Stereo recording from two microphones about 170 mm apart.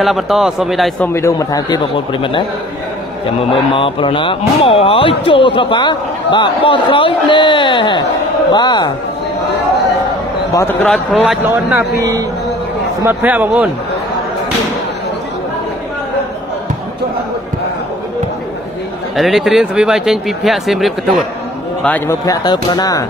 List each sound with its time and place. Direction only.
0.0 s speech: centre (ahead or behind)
1.0 s speech: 15° left (ahead or behind)
3.7 s speech: 30° left (ahead or behind)
10.5 s a man's voice: 15° left (ahead or behind)
11.2 s a man's voice: 10° right (ahead or behind)
12.0 s speech: 20° right (ahead or behind)
13.0 s a man's voice: 10° right (ahead or behind)
19.1 s a man's voice: centre (ahead or behind)
22.2 s speech: 20° left (ahead or behind)